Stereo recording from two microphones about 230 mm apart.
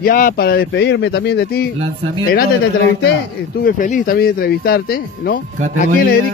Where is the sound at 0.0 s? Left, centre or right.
Left.